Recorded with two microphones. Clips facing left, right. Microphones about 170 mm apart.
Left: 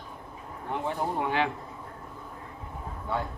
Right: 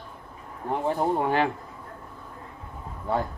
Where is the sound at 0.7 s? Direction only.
40° right (ahead or behind).